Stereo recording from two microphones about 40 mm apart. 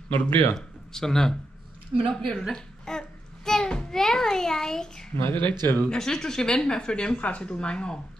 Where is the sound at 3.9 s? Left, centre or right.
Centre.